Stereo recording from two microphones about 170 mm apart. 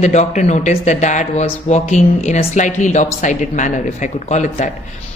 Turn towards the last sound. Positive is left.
turn(degrees=45)  # may be behind; listen again after turning